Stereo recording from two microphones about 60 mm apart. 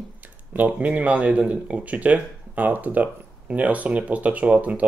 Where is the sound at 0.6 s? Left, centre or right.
Right.